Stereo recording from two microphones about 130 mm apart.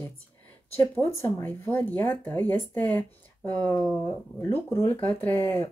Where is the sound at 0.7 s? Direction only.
20° left (ahead or behind).